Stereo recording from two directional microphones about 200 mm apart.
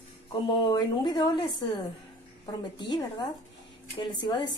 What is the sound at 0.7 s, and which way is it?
Speech, 20° left (ahead or behind).